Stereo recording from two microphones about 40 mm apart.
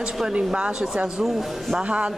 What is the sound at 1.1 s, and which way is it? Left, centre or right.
Speech, centre.